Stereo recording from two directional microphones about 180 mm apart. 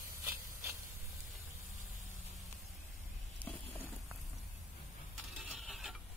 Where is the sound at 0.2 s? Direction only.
15° right (ahead or behind).